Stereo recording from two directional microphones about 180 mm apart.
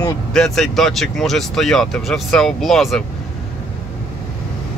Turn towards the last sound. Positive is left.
turn(degrees=0)  # may be behind; listen again after turning